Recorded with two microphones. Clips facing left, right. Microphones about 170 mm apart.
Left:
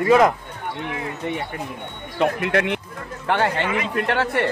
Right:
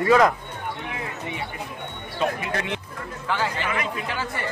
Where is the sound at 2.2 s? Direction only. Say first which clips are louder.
Left 6 dB; 65° left (ahead or behind).